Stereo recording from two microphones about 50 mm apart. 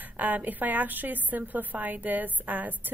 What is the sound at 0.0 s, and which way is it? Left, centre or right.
A woman's voice, right.